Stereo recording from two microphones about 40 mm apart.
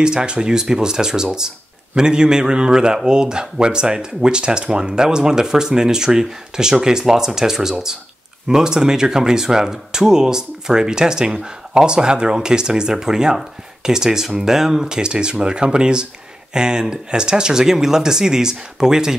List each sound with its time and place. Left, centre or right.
0.0 s speech: right